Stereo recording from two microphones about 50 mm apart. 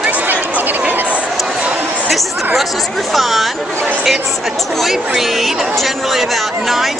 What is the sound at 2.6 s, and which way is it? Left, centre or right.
Speech, centre.